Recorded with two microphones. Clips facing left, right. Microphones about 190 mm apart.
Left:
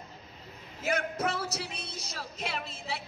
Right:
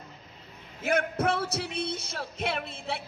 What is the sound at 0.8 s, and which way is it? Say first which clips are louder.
Speech: right 4 dB; 55° right (ahead or behind).